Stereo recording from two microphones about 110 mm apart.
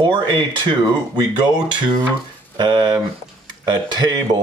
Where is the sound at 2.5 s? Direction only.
45° right (ahead or behind).